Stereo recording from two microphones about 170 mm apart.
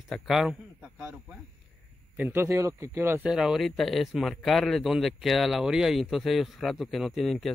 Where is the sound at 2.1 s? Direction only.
15° right (ahead or behind).